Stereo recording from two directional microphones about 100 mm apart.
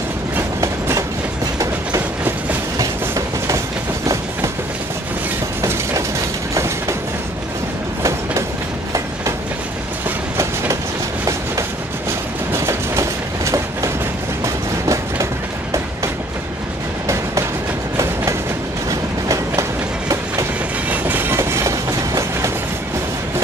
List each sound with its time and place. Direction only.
0.6 s train: 30° right (ahead or behind)
2.8 s train: 35° right (ahead or behind)
5.6 s train: 30° right (ahead or behind)
10.0 s train: 30° right (ahead or behind)
12.5 s train: 30° right (ahead or behind)
18.9 s train: 30° right (ahead or behind)
20.9 s train: 20° right (ahead or behind)